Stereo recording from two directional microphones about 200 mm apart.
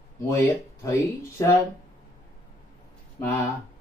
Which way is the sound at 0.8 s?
15° left (ahead or behind).